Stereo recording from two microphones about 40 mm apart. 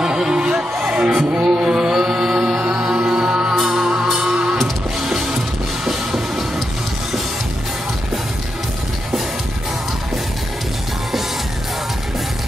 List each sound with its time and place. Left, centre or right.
0.0 s music: centre
3.5 s music: centre